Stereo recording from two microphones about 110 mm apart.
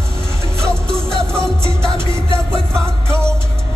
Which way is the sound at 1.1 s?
5° left (ahead or behind).